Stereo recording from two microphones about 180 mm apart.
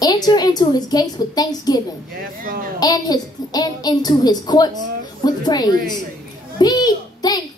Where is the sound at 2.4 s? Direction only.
50° right (ahead or behind).